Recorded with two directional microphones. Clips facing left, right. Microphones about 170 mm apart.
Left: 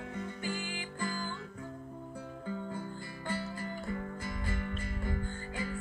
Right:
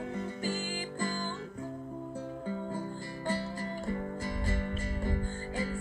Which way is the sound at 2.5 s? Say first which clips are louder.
Right 1 dB; 40° right (ahead or behind).